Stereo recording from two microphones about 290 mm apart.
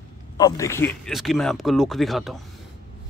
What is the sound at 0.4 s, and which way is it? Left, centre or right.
Speech, centre.